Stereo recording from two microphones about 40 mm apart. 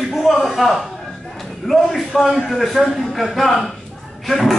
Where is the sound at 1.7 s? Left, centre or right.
Centre.